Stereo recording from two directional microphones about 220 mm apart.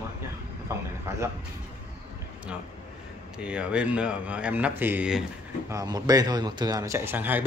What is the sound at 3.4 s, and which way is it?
Speech, 5° right (ahead or behind).